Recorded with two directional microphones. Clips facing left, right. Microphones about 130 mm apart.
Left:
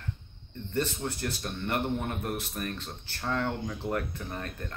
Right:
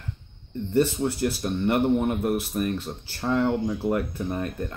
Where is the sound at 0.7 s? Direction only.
15° right (ahead or behind).